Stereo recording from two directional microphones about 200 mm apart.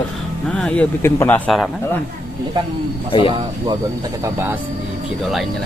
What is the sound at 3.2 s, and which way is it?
Speech, 20° right (ahead or behind).